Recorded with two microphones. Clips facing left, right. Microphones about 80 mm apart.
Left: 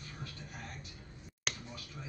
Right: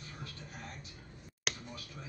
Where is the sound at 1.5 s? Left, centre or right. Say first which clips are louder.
Right 1 dB; centre.